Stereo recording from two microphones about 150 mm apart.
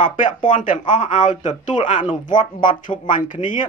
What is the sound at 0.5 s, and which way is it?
Speech, 60° left (ahead or behind).